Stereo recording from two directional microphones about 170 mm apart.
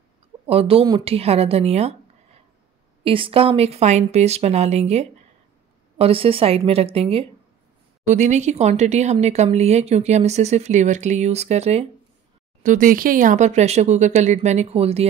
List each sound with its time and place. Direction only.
0.5 s a woman's voice: 35° right (ahead or behind)
12.6 s speech: 50° right (ahead or behind)